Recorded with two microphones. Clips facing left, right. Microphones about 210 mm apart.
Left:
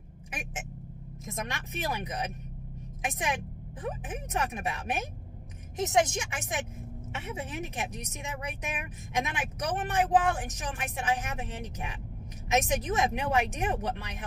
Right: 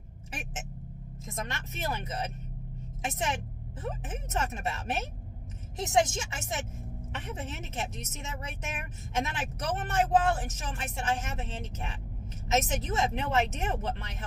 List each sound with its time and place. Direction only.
1.2 s a woman's voice: 15° left (ahead or behind)
7.1 s speech: 10° left (ahead or behind)